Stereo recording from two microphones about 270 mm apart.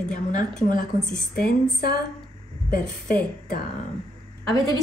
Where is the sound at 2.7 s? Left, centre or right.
Left.